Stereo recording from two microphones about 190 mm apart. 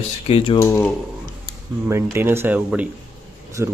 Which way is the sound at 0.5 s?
15° left (ahead or behind).